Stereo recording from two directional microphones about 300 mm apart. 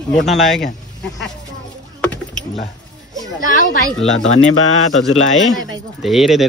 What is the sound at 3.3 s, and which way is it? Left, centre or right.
Speech, left.